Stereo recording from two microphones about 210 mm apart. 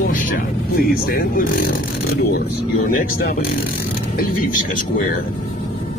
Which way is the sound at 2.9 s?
40° left (ahead or behind).